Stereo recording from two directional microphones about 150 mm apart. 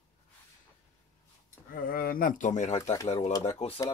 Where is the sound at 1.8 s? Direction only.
75° left (ahead or behind); by 2.8 s 55° left (ahead or behind).